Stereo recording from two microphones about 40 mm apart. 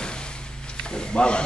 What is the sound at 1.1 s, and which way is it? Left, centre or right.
Speech, left.